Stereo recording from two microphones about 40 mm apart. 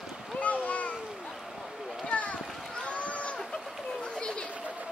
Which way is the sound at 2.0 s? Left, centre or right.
Left.